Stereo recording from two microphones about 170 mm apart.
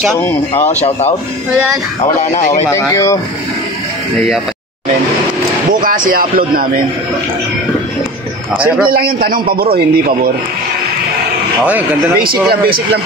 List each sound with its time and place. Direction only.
0.2 s speech: 10° left (ahead or behind)
0.7 s speech: 40° left (ahead or behind)
2.6 s speech: 15° left (ahead or behind)
5.7 s speech: 55° right (ahead or behind)
8.5 s a man's voice: 5° right (ahead or behind)
8.9 s speech: 60° right (ahead or behind)
12.2 s speech: 60° right (ahead or behind)